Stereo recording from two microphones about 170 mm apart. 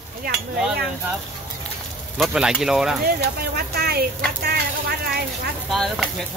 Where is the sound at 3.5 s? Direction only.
65° right (ahead or behind).